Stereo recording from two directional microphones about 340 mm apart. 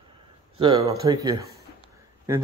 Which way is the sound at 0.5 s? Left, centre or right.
Centre.